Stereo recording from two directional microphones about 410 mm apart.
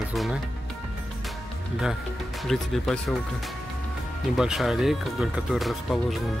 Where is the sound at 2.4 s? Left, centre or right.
Centre.